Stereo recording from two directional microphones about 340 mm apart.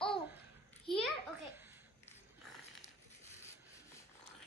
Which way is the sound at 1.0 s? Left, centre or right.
Centre.